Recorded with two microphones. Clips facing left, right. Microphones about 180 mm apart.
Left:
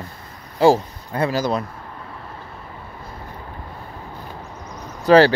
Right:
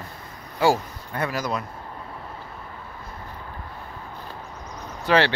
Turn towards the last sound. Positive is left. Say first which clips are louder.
# left 8 dB
turn(degrees=40)  # may be behind; listen again after turning